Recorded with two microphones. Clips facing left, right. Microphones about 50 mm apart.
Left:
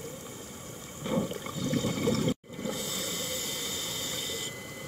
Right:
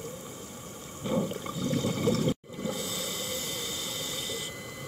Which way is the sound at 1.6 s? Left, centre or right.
Left.